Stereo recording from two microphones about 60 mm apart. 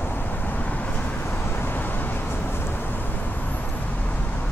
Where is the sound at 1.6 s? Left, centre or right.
Left.